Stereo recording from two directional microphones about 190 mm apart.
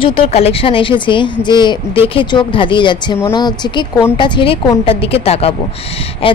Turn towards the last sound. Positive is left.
turn(degrees=30)  # may be behind; listen again after turning